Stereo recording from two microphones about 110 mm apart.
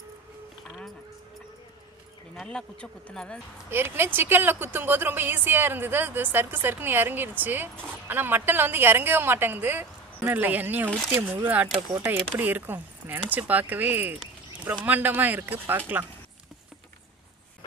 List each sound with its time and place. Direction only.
2.3 s speech: 5° left (ahead or behind)
3.7 s a woman's voice: 20° right (ahead or behind)